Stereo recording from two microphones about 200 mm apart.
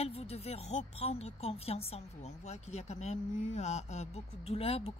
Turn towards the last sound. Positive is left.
turn(degrees=30)  # may be behind; listen again after turning